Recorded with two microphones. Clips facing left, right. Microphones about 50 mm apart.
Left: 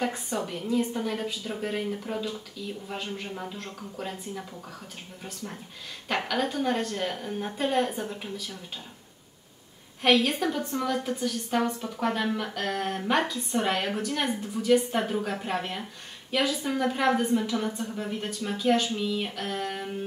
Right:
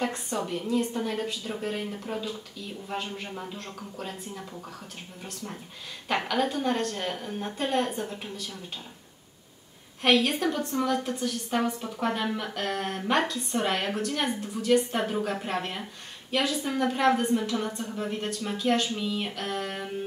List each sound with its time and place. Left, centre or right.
0.0 s a woman's voice: centre
10.0 s a woman's voice: centre